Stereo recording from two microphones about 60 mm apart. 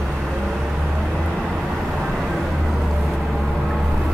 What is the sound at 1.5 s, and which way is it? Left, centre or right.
Vehicle, centre.